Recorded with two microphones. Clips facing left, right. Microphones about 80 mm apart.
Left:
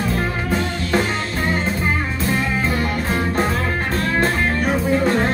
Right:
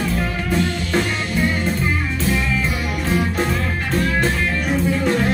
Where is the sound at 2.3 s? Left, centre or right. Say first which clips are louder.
Left 3 dB; left.